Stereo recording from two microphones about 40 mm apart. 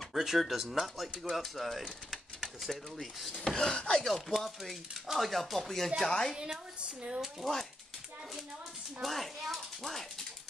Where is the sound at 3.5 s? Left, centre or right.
Left.